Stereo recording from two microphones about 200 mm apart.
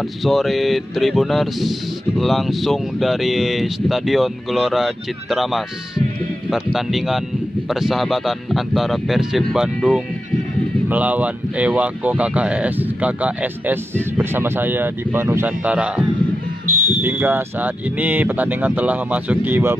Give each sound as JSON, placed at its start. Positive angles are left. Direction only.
{"t": 0.0, "sound": "speech", "side_deg": 0}
{"t": 16.6, "sound": "fire alarm", "side_deg": -40}
{"t": 17.0, "sound": "speech", "side_deg": -10}